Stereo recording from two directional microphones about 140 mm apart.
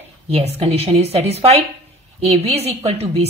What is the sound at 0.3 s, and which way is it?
A woman's voice, 45° right (ahead or behind).